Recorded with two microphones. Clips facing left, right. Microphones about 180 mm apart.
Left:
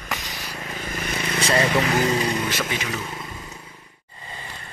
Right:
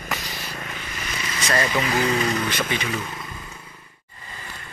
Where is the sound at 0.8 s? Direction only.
50° left (ahead or behind).